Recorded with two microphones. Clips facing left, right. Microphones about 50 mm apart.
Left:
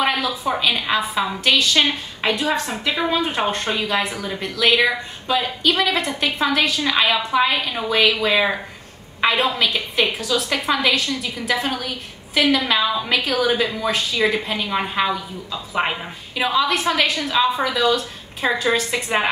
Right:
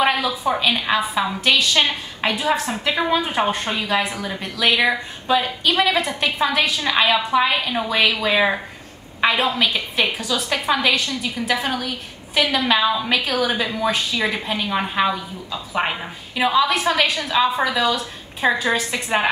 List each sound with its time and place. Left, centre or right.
0.0 s a woman's voice: centre
2.3 s a woman's voice: centre